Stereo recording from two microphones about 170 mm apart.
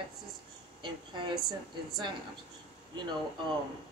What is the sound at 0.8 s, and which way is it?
Speech, 30° right (ahead or behind).